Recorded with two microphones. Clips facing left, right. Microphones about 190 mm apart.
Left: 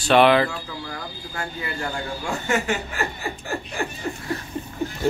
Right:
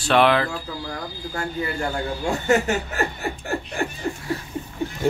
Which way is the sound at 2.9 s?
55° right (ahead or behind).